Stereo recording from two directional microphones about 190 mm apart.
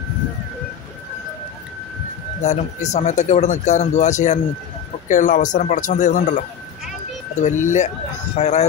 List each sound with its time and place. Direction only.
2.4 s speech: 35° left (ahead or behind)
7.4 s speech: 40° left (ahead or behind)